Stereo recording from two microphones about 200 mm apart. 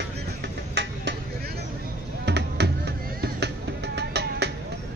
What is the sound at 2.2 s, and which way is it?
Music, 55° right (ahead or behind).